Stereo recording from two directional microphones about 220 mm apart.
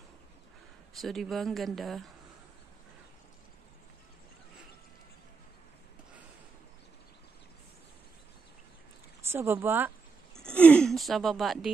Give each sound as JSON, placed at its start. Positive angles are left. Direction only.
{"t": 1.0, "sound": "speech", "side_deg": 0}
{"t": 9.2, "sound": "a sound", "side_deg": -10}
{"t": 10.4, "sound": "speech", "side_deg": 5}